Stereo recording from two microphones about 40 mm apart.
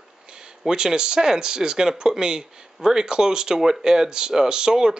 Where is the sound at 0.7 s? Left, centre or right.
Centre.